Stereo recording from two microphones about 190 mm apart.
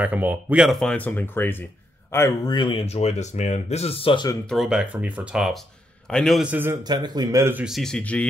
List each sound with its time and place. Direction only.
0.0 s speech: 10° right (ahead or behind); by 4.4 s 25° left (ahead or behind)
4.5 s a man's voice: centre (ahead or behind)